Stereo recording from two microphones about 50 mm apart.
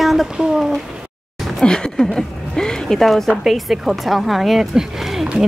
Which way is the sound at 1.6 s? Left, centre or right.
Centre.